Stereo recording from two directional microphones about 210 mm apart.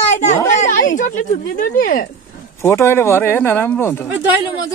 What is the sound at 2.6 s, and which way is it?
Speech, 10° left (ahead or behind).